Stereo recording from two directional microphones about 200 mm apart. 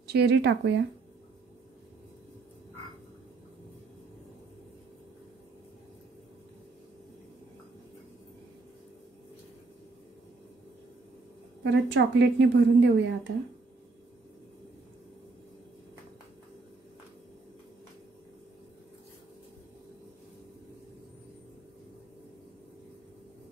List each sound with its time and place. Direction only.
0.0 s a woman's voice: 55° right (ahead or behind)
11.6 s a woman's voice: 60° right (ahead or behind)